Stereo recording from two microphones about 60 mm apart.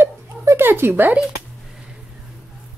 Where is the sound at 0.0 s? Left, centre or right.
Right.